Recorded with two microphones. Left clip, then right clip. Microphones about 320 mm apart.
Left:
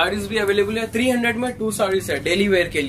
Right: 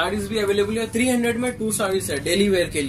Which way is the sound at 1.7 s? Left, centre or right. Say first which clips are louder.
Left 5 dB; left.